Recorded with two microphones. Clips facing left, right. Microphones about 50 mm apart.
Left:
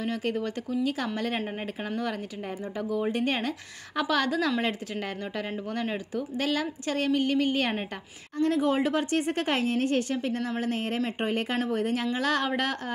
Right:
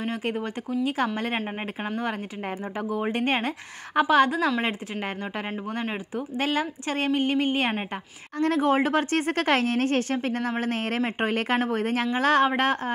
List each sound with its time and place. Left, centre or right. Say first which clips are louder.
0.0 s a woman's voice: right 1 dB; right
8.4 s a woman's voice: right 2 dB; right